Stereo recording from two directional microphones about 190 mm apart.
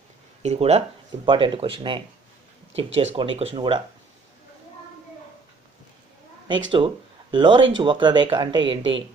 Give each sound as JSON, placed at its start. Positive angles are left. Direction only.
{"t": 0.4, "sound": "speech", "side_deg": -35}
{"t": 6.7, "sound": "speech", "side_deg": -25}